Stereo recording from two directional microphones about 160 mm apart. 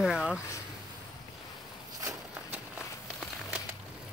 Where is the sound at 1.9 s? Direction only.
20° right (ahead or behind).